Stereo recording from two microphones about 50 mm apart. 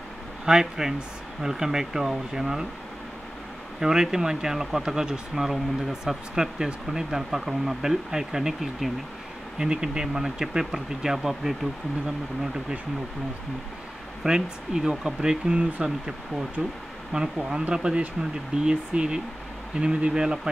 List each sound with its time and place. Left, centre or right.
0.5 s speech: centre
3.8 s speech: centre
9.6 s speech: centre
14.2 s speech: centre